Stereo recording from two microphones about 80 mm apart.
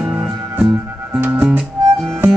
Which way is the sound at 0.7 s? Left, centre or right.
Right.